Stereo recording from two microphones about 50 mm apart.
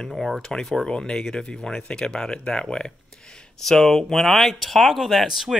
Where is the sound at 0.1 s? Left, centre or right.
Centre.